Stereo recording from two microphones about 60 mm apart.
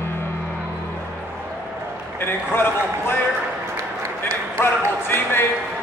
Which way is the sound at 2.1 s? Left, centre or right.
Left.